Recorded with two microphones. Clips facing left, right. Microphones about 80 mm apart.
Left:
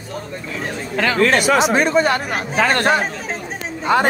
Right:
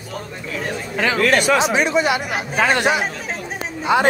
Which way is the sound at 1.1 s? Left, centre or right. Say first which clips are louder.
Left 1 dB; left.